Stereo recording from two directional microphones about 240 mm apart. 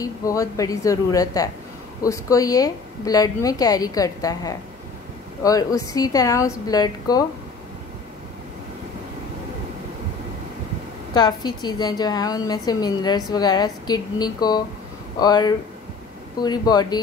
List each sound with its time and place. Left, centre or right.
0.0 s a woman's voice: centre
11.1 s a woman's voice: centre